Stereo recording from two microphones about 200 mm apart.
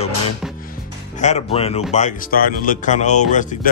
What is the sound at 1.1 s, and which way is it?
Speech, 35° left (ahead or behind).